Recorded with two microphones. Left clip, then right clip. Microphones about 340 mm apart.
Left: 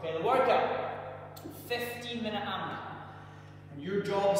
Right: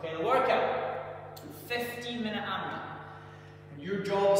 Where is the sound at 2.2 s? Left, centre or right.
Centre.